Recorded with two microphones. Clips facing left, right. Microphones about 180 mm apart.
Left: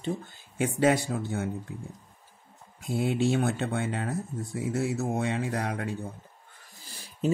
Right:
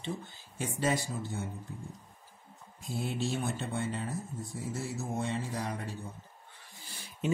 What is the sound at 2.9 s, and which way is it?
Speech, 65° left (ahead or behind).